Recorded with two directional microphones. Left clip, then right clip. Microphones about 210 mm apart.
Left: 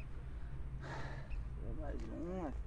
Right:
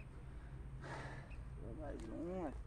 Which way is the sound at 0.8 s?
15° left (ahead or behind).